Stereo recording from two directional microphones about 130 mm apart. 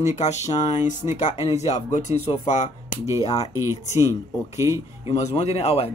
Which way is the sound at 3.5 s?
20° right (ahead or behind).